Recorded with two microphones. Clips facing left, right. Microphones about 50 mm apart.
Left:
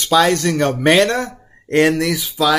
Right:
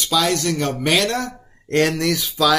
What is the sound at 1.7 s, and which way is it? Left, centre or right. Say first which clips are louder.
Speech: left 3 dB; centre.